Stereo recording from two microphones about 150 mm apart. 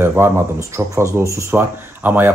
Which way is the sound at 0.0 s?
15° right (ahead or behind).